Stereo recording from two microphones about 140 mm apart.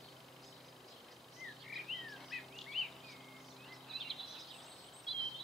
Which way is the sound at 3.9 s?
Centre (ahead or behind).